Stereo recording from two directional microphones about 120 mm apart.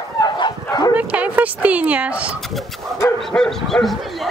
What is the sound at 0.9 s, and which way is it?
Dog, 10° right (ahead or behind).